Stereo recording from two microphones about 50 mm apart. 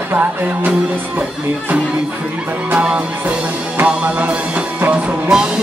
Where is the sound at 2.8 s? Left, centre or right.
Right.